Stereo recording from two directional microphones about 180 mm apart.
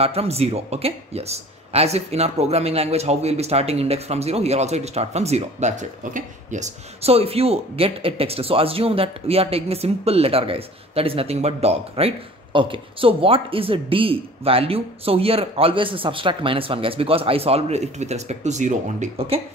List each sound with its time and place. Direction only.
0.0 s speech: 35° right (ahead or behind)